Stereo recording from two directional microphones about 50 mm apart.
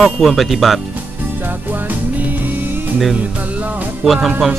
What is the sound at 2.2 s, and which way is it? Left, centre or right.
Music, right.